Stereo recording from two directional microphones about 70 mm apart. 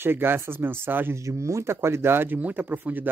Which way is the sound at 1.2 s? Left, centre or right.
Right.